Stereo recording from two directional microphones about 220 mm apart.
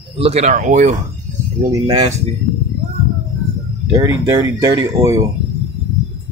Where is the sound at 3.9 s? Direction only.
15° right (ahead or behind).